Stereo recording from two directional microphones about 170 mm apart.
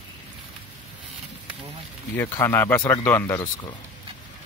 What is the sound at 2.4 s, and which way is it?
Speech, 10° left (ahead or behind).